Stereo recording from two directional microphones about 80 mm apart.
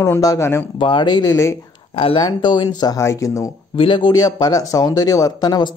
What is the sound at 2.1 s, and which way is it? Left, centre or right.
Speech, left.